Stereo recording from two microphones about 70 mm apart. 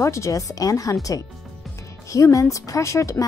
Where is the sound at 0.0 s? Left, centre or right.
Left.